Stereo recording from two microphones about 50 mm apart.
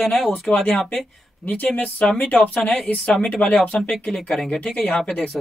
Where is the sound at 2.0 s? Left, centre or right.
Left.